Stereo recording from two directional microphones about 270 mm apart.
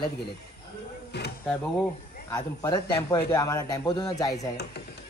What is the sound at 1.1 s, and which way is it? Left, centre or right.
Speech, left.